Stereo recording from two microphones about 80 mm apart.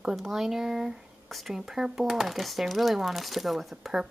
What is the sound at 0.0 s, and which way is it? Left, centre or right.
Speech, centre.